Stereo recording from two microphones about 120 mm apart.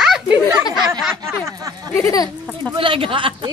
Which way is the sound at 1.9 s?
25° left (ahead or behind).